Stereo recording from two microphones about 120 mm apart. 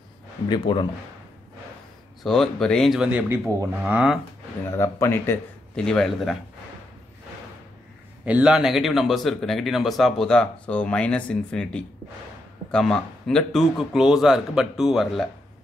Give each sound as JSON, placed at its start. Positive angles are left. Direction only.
{"t": 0.5, "sound": "speech", "side_deg": 40}
{"t": 2.2, "sound": "speech", "side_deg": 5}
{"t": 3.0, "sound": "speech", "side_deg": -10}
{"t": 4.7, "sound": "speech", "side_deg": 25}
{"t": 5.8, "sound": "speech", "side_deg": 5}
{"t": 8.3, "sound": "speech", "side_deg": -10}